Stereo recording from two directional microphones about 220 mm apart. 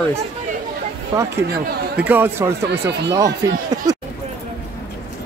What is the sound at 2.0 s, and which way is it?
Speech, 10° right (ahead or behind).